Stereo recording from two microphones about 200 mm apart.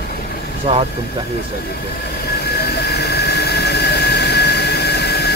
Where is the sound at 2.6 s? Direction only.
55° left (ahead or behind).